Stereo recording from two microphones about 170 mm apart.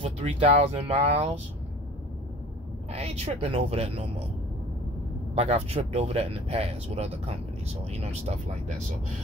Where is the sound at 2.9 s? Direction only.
35° right (ahead or behind).